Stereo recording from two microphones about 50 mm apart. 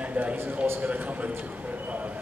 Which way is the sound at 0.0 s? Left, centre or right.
Right.